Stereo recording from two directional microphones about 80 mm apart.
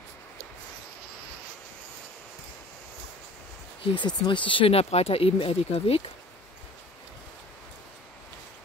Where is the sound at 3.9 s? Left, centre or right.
Left.